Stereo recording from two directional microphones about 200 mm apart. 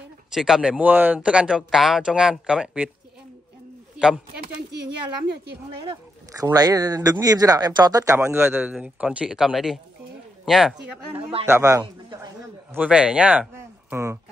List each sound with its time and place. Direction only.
0.3 s speech: centre (ahead or behind)
6.3 s speech: 15° right (ahead or behind)
11.4 s a man's voice: 15° right (ahead or behind)
12.7 s speech: 5° right (ahead or behind)